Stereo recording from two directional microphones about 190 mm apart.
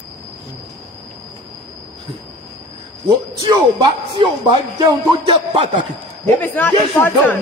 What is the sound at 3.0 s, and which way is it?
Speech, 20° right (ahead or behind).